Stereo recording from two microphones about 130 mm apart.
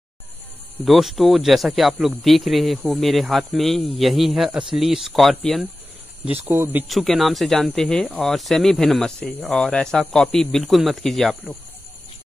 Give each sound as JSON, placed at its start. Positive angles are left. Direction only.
{"t": 0.8, "sound": "speech", "side_deg": 0}
{"t": 6.2, "sound": "speech", "side_deg": -15}
{"t": 6.9, "sound": "speech", "side_deg": 0}